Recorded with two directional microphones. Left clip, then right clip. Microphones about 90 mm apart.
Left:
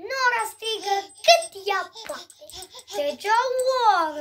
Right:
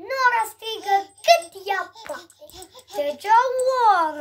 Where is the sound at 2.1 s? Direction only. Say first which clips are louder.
Right 1 dB; 25° left (ahead or behind).